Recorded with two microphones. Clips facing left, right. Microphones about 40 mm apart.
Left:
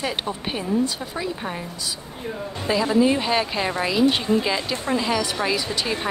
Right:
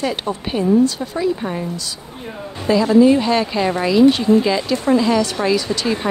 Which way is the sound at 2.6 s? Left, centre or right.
Centre.